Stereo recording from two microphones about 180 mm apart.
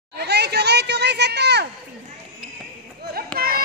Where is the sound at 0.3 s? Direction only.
65° right (ahead or behind).